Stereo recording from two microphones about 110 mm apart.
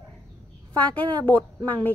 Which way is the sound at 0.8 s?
15° left (ahead or behind).